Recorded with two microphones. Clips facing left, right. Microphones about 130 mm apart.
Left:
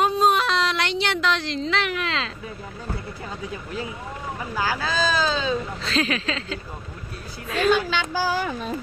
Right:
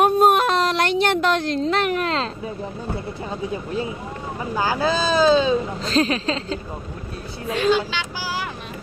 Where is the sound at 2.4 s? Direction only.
25° right (ahead or behind).